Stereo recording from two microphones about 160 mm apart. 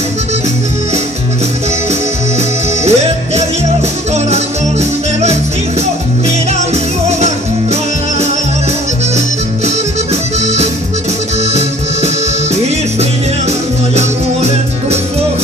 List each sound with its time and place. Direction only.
2.8 s music: 45° right (ahead or behind)
10.4 s accordion: 45° right (ahead or behind)
13.5 s music: 40° right (ahead or behind)